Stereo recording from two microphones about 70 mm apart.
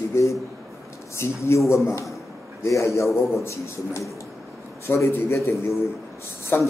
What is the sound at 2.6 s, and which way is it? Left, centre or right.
A man's voice, left.